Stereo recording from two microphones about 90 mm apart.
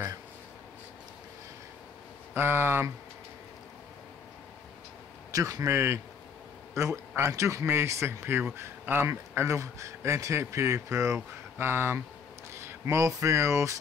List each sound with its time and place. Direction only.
2.3 s speech: 25° right (ahead or behind)
5.3 s speech: 35° right (ahead or behind)